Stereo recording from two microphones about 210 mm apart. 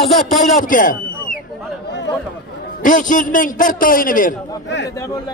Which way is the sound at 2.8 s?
40° left (ahead or behind).